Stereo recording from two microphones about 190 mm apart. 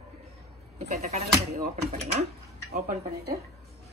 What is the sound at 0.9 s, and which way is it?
Speech, 35° right (ahead or behind).